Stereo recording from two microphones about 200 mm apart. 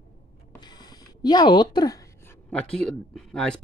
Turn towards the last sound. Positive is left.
turn(degrees=5)  # may be behind; listen again after turning